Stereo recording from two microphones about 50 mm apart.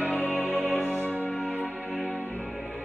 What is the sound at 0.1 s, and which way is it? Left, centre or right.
Music, left.